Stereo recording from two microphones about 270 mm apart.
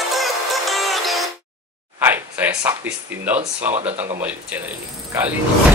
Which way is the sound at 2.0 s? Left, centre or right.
Centre.